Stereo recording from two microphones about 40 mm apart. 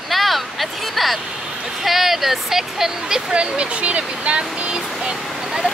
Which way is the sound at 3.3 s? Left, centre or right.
Right.